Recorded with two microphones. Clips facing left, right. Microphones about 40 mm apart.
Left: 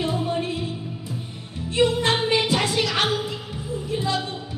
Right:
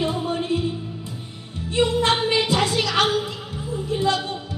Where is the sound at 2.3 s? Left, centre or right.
Centre.